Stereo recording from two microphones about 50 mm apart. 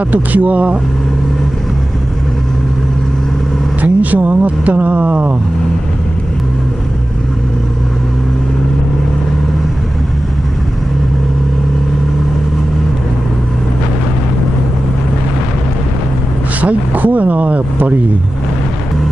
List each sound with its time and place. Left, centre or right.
0.1 s speech: right
3.8 s speech: right
16.6 s speech: right